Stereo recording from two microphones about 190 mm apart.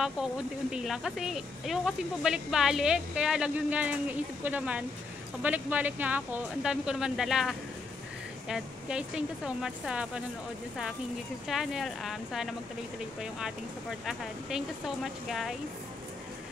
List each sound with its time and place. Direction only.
0.7 s speech: 5° right (ahead or behind)
11.4 s speech: centre (ahead or behind)